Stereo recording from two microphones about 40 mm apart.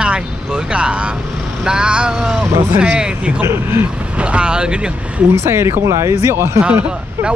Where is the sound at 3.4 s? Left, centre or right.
Right.